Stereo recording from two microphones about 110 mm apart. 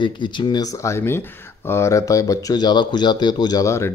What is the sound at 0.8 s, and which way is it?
Speech, 25° left (ahead or behind).